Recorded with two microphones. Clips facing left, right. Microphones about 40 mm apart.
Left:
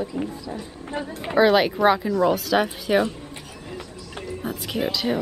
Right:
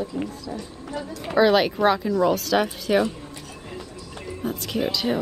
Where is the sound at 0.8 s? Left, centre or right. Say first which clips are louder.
Left 3 dB; left.